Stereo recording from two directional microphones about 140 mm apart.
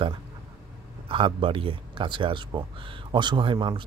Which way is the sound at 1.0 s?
40° right (ahead or behind).